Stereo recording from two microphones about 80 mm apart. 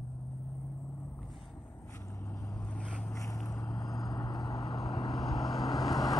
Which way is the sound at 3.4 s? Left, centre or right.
Left.